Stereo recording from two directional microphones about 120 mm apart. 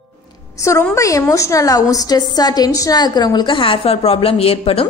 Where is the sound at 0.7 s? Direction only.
25° left (ahead or behind).